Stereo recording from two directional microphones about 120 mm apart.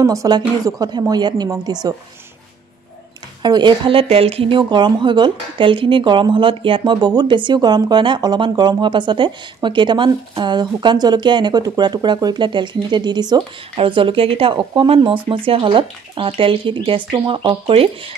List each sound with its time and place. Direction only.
0.0 s speech: 30° right (ahead or behind)
3.4 s speech: 40° right (ahead or behind)